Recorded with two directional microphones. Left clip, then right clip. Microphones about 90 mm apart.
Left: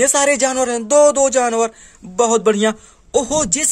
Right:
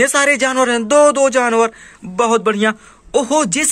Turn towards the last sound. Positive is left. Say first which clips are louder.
# right 3 dB
turn(degrees=20)  # may be behind; listen again after turning